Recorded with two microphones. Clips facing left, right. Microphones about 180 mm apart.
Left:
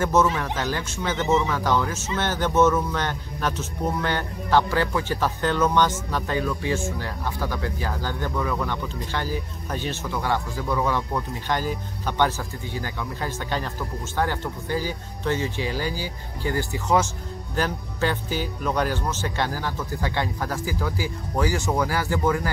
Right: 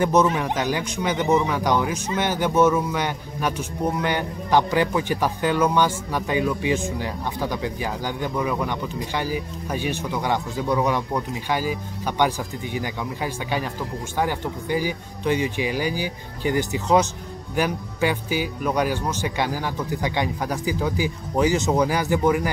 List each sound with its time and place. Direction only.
0.0 s speech: 15° right (ahead or behind)